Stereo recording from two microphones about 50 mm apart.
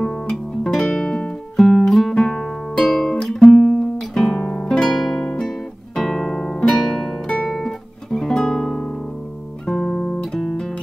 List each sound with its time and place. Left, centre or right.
0.0 s music: centre
3.5 s guitar: centre
6.7 s music: centre
7.5 s guitar: centre
9.7 s music: centre